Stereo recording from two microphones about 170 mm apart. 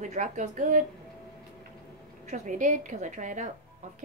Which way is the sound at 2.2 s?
45° right (ahead or behind).